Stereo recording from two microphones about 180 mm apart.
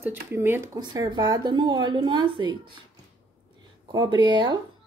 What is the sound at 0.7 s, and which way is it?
A woman's voice, 20° right (ahead or behind).